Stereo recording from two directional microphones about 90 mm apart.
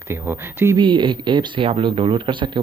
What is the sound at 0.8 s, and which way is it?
Speech, 65° right (ahead or behind).